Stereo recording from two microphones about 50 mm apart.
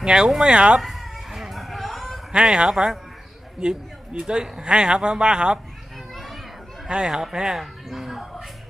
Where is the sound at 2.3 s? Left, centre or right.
Centre.